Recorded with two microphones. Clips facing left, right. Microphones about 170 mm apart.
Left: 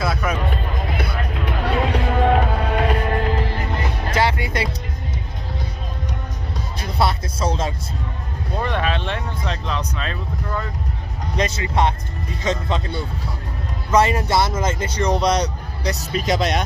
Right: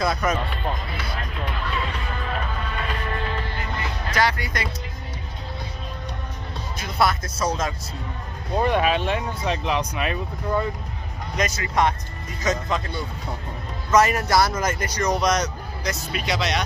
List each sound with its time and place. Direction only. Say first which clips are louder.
0.0 s music: even; 5° left (ahead or behind)
1.6 s music: left 12 dB; 70° left (ahead or behind)
4.1 s music: left 2 dB; 25° left (ahead or behind)
6.8 s music: left 1 dB; 30° left (ahead or behind)
8.5 s speech: right 3 dB; 10° right (ahead or behind)
11.3 s speech: left 2 dB; 25° left (ahead or behind); by 16.6 s 50° left (ahead or behind)